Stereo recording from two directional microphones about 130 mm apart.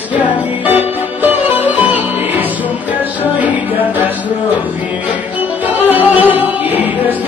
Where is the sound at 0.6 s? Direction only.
15° right (ahead or behind).